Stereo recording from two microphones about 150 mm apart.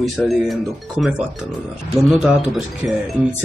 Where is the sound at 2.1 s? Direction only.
5° right (ahead or behind).